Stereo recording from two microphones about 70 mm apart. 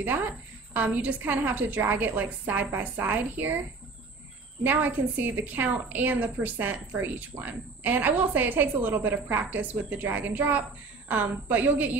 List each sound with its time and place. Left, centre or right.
0.7 s a woman's voice: right
4.6 s a woman's voice: right